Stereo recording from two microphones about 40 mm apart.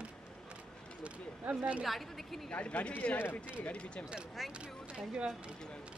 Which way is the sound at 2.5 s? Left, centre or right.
Left.